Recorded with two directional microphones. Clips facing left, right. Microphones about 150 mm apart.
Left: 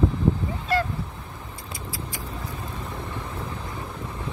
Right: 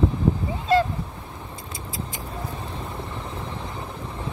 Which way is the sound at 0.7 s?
20° right (ahead or behind).